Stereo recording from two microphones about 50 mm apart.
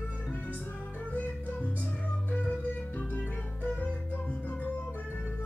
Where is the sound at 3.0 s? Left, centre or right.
Left.